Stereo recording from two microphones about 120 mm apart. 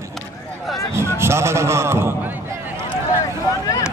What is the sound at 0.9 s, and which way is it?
Speech, 20° right (ahead or behind).